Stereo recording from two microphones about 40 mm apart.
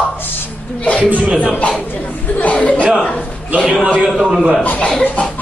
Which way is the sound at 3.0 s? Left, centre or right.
Left.